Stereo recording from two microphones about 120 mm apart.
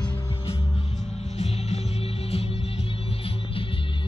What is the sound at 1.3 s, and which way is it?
Music, 60° left (ahead or behind).